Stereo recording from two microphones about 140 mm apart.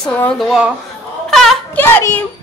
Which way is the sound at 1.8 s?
15° left (ahead or behind).